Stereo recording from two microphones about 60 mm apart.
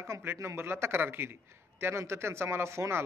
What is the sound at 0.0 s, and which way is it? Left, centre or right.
A man's voice, right.